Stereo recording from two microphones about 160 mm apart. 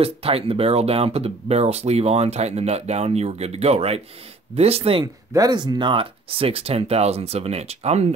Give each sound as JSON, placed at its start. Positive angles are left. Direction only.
{"t": 0.0, "sound": "speech", "side_deg": -35}
{"t": 5.0, "sound": "speech", "side_deg": -25}